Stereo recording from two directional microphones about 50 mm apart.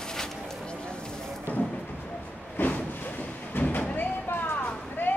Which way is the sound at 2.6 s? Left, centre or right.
Left.